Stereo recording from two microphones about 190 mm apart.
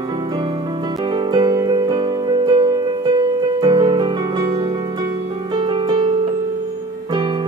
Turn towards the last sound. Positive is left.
turn(degrees=-25)  # may be behind; listen again after turning